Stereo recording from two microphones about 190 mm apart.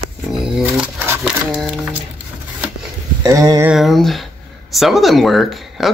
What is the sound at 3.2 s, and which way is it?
Speech, 20° right (ahead or behind).